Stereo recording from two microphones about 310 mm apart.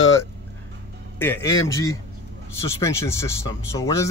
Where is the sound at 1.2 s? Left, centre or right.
Centre.